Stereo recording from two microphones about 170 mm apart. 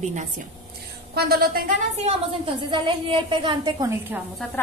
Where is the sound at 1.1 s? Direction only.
65° right (ahead or behind).